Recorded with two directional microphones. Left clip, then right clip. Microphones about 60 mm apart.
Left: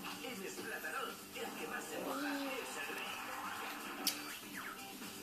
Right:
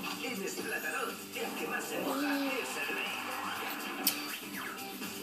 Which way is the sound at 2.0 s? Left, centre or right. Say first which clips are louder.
Right 7 dB; centre.